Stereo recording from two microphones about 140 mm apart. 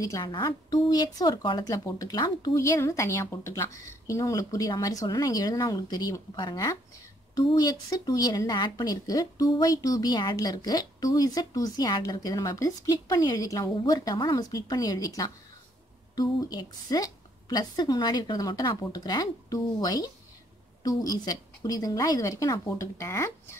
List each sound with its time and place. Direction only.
0.0 s speech: 25° left (ahead or behind)